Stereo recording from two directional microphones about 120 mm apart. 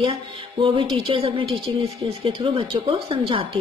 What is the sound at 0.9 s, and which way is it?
Speech, 45° right (ahead or behind).